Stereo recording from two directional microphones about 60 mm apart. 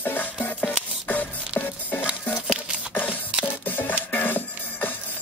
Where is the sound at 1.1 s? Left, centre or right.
Left.